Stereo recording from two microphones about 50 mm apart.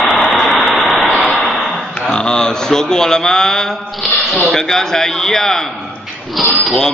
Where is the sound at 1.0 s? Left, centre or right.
Left.